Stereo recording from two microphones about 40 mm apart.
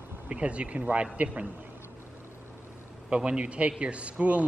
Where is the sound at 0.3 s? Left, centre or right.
Right.